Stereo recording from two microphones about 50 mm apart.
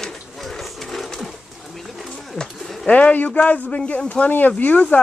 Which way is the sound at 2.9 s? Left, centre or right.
Left.